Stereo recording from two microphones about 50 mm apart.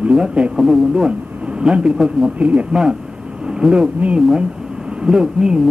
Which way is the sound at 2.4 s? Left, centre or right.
Right.